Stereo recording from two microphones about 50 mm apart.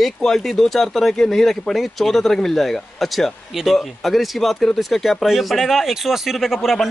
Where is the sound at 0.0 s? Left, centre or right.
Centre.